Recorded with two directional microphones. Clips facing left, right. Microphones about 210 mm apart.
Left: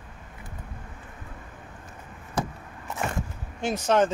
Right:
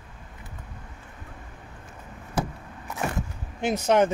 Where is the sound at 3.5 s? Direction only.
20° right (ahead or behind).